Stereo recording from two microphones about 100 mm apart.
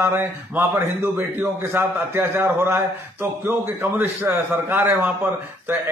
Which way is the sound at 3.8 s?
20° right (ahead or behind).